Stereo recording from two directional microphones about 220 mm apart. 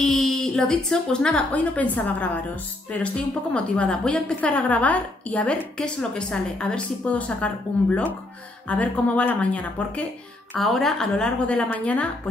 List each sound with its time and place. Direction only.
0.0 s a woman's voice: centre (ahead or behind)